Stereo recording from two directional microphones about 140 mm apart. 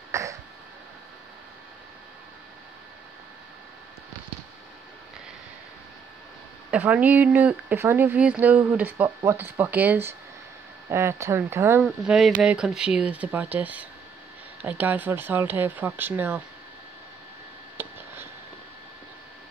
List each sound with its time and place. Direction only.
0.1 s throat clearing: 20° right (ahead or behind)
6.7 s speech: 10° right (ahead or behind)
11.8 s speech: 5° right (ahead or behind)
17.8 s a sound: 15° right (ahead or behind)